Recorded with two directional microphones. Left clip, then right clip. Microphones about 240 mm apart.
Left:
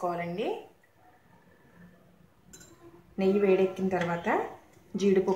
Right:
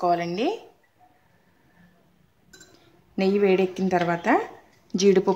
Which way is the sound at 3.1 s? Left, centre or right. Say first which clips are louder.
Right 4 dB; right.